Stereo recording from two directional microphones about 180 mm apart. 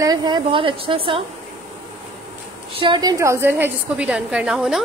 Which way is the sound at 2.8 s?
25° right (ahead or behind).